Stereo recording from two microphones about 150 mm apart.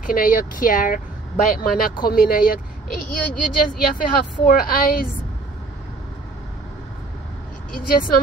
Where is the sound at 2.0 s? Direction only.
75° left (ahead or behind).